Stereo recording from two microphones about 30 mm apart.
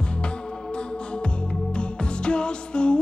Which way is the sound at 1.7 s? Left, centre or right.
Left.